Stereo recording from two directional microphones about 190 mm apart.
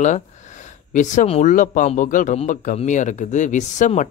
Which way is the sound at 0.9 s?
40° left (ahead or behind).